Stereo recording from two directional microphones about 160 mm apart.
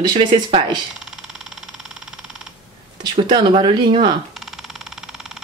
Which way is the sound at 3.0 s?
30° right (ahead or behind).